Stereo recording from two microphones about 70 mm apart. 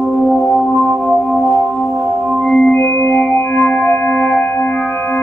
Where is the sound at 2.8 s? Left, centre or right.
Left.